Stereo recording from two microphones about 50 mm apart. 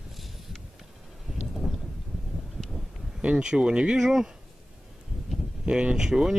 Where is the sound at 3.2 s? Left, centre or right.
Centre.